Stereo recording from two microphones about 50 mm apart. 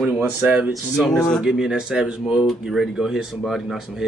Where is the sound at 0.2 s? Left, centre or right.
Right.